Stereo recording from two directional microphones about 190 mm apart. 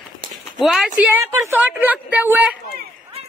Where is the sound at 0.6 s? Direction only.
Centre (ahead or behind).